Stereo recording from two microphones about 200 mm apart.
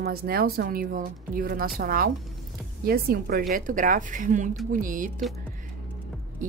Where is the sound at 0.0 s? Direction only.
50° right (ahead or behind).